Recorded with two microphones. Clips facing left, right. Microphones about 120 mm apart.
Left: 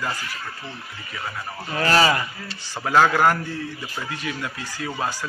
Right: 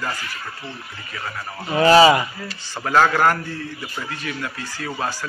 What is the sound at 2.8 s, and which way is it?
A man's voice, 10° left (ahead or behind).